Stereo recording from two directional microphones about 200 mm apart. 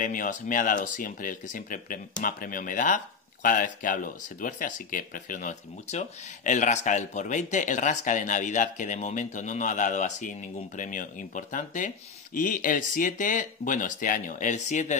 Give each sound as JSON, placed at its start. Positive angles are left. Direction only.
{"t": 0.0, "sound": "speech", "side_deg": 40}